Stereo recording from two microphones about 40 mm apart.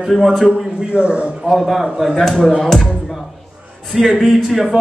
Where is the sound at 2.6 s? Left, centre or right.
Centre.